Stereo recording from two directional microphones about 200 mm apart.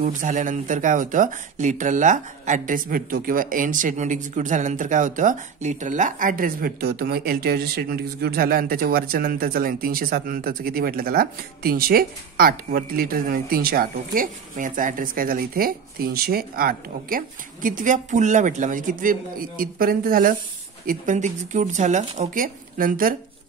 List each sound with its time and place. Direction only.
0.0 s speech: 40° right (ahead or behind)